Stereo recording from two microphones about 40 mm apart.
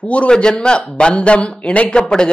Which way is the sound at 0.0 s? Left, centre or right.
Left.